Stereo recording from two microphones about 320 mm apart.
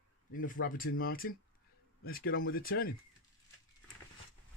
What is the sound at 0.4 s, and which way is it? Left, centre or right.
Speech, left.